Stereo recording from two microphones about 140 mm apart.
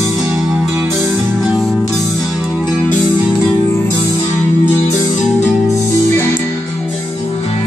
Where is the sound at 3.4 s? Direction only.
15° left (ahead or behind).